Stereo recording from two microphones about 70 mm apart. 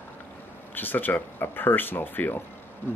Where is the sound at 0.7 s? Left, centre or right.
Left.